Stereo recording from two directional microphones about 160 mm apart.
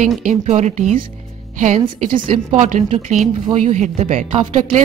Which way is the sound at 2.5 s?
50° right (ahead or behind).